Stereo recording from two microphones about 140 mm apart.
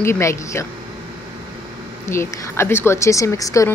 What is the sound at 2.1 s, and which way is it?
Speech, 20° left (ahead or behind).